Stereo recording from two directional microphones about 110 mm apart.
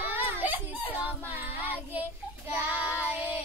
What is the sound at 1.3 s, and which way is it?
Child singing, 15° right (ahead or behind).